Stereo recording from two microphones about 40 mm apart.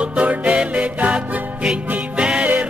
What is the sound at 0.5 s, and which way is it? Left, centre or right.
Music, right.